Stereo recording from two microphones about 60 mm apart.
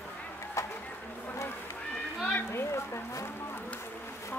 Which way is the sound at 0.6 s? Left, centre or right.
Left.